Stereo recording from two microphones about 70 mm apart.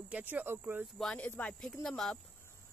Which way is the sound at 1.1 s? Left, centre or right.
Left.